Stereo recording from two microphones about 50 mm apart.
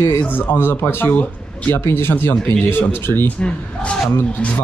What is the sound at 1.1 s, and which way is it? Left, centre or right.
Speech, left.